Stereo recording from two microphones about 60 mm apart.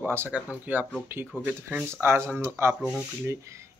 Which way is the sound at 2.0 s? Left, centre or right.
Right.